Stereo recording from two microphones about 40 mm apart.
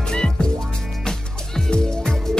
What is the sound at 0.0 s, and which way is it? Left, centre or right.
Music, centre.